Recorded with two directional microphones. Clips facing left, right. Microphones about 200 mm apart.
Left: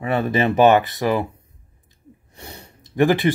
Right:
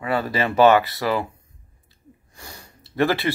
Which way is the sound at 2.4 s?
20° left (ahead or behind).